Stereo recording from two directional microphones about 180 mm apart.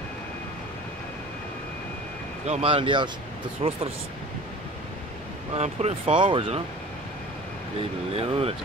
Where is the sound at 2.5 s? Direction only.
35° right (ahead or behind).